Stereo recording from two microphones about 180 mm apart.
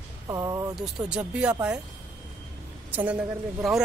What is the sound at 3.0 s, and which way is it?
Speech, 5° right (ahead or behind).